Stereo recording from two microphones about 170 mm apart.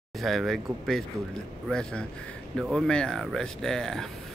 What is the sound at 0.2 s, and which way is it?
Speech, centre (ahead or behind).